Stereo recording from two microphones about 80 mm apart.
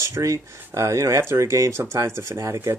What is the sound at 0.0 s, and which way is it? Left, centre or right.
Speech, right.